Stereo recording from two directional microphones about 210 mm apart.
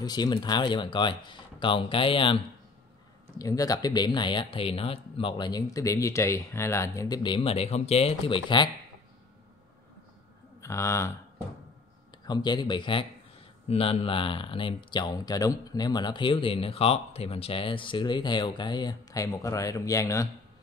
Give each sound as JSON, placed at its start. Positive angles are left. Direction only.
{"t": 0.0, "sound": "speech", "side_deg": 20}
{"t": 10.6, "sound": "speech", "side_deg": 15}
{"t": 12.3, "sound": "speech", "side_deg": 20}